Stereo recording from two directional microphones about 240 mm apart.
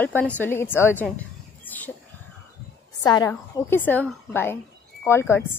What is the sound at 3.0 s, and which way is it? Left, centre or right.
A woman's voice, centre.